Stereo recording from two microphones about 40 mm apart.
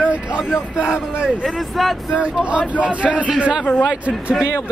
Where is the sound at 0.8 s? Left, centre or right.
Right.